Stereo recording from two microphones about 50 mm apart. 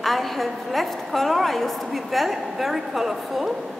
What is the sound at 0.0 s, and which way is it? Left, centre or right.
A woman's voice, centre.